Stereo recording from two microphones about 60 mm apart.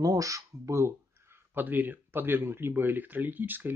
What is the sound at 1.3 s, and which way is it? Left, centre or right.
Speech, right.